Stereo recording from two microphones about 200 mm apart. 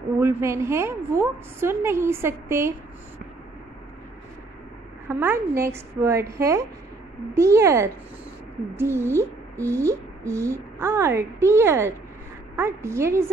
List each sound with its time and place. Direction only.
0.2 s speech: 15° right (ahead or behind)
5.0 s speech: 10° right (ahead or behind)